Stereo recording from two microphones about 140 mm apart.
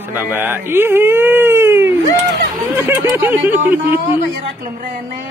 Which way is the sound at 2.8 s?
15° right (ahead or behind).